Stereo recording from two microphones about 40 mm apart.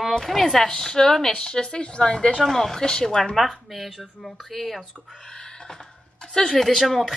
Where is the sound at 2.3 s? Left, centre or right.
Centre.